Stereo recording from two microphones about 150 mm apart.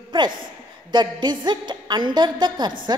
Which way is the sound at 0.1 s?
30° right (ahead or behind).